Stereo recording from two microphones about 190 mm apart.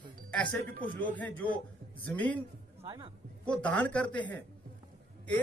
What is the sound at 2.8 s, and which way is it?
Speech, 25° right (ahead or behind).